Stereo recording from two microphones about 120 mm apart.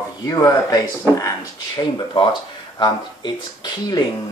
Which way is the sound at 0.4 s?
30° left (ahead or behind).